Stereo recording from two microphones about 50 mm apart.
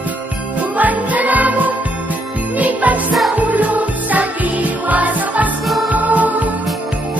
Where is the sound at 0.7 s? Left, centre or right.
Right.